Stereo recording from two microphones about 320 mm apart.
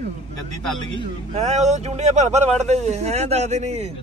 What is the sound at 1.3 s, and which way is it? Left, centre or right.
Speech, right.